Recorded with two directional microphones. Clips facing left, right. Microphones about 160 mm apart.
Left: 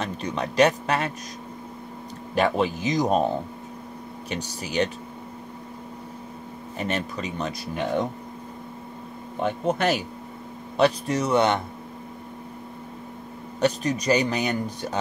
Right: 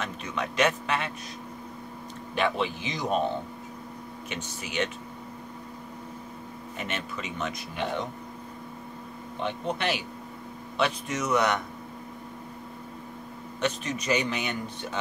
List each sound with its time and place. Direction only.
0.0 s speech: 35° left (ahead or behind)
2.3 s speech: 40° left (ahead or behind)
4.3 s speech: 35° left (ahead or behind)
6.8 s speech: 35° left (ahead or behind)
9.4 s speech: 45° left (ahead or behind); by 11.6 s 30° left (ahead or behind)
13.6 s speech: 35° left (ahead or behind)